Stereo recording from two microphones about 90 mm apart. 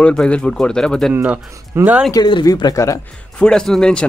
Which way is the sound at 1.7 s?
30° right (ahead or behind).